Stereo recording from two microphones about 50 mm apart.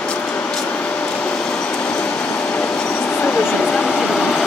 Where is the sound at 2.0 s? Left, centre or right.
Left.